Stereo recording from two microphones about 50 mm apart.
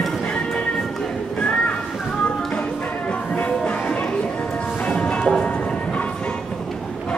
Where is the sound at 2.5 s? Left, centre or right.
Centre.